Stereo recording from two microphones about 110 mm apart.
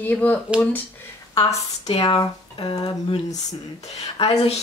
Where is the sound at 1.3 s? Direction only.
30° left (ahead or behind).